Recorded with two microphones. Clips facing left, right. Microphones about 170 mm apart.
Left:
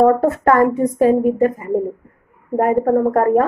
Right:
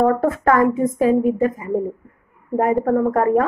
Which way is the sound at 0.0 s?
35° left (ahead or behind).